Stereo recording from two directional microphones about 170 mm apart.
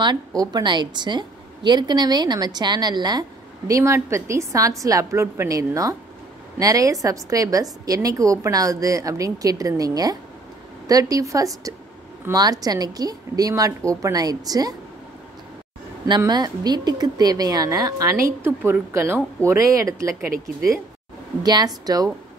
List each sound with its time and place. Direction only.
0.0 s a woman's voice: 25° right (ahead or behind)
16.1 s a woman's voice: 25° right (ahead or behind)
21.4 s a woman's voice: 25° right (ahead or behind)